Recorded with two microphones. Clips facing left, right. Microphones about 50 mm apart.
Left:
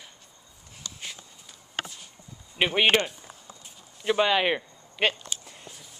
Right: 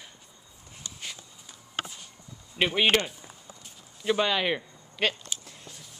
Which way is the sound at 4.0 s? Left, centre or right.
Centre.